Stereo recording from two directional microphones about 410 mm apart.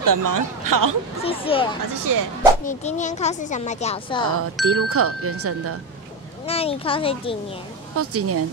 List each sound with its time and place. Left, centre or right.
0.0 s speech: right
1.2 s speech: centre
2.0 s speech: right
2.6 s speech: centre
4.6 s speech: right
6.4 s speech: centre
7.9 s speech: right